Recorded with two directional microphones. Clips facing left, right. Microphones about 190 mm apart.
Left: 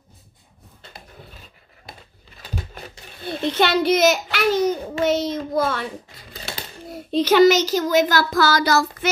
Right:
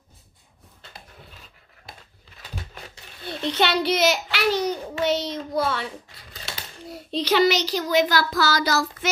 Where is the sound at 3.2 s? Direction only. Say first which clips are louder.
Left 3 dB; 50° left (ahead or behind).